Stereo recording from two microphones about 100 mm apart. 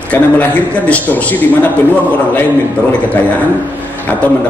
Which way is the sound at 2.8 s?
15° right (ahead or behind).